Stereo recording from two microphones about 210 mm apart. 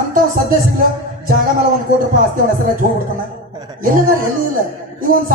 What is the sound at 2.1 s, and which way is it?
Speech, 40° right (ahead or behind).